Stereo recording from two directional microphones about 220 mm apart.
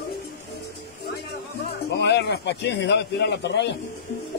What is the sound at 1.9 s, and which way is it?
Speech, 50° left (ahead or behind).